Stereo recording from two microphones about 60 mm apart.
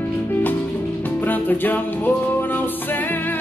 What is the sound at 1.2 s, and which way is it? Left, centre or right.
Music, left.